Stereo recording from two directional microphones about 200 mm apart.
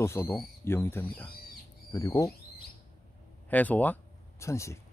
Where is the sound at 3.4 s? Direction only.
10° left (ahead or behind).